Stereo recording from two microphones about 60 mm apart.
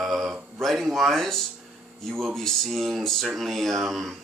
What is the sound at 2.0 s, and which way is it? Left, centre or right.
Speech, centre.